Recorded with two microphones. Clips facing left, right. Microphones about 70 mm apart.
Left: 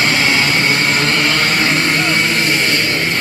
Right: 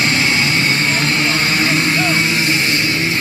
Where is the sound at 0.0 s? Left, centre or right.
Left.